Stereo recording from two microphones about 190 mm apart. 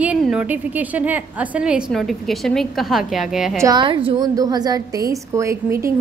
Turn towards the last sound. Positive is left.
turn(degrees=-15)  # may be behind; listen again after turning